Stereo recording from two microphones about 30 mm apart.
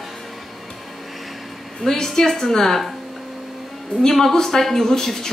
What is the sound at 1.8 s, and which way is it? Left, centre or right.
Speech, centre.